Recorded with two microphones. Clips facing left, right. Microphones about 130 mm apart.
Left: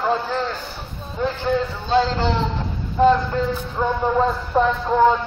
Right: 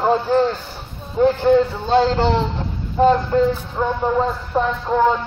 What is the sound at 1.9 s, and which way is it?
Speech, 50° right (ahead or behind).